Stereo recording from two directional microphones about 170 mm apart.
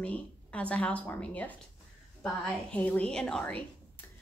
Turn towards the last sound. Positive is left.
turn(degrees=10)  # may be behind; listen again after turning